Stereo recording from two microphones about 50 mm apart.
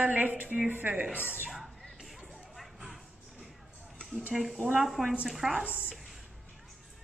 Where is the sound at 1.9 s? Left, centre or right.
Centre.